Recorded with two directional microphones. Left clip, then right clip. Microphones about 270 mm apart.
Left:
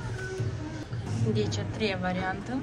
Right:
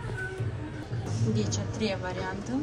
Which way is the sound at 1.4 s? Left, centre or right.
Centre.